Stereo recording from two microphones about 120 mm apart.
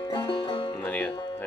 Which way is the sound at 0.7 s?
15° left (ahead or behind).